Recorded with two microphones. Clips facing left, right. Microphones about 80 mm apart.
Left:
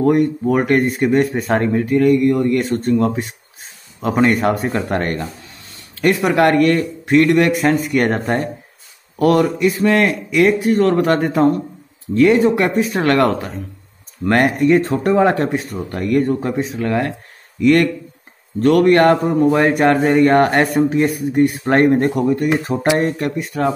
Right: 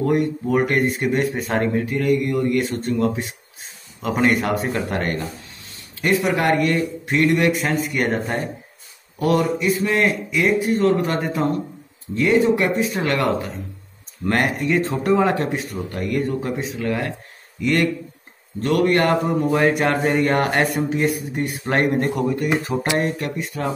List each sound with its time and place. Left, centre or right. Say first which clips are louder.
0.0 s speech: left 5 dB; left
6.2 s a man's voice: left 8 dB; left
9.2 s a man's voice: left 5 dB; left
18.6 s speech: left 6 dB; left